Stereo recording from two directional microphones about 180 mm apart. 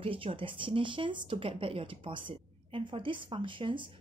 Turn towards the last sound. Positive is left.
turn(degrees=-30)  # may be behind; listen again after turning